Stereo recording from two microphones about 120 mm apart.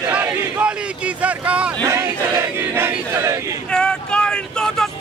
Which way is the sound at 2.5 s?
20° right (ahead or behind).